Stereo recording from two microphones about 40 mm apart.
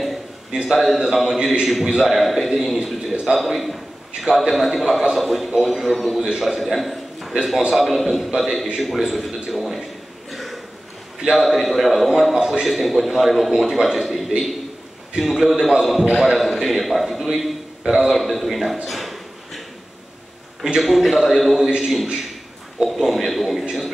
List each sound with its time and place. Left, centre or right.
0.5 s a man's voice: centre
9.2 s a sound: centre
11.1 s a man's voice: centre
12.4 s a man's voice: centre
12.6 s a man's voice: centre
18.9 s a sound: centre
20.6 s a man's voice: centre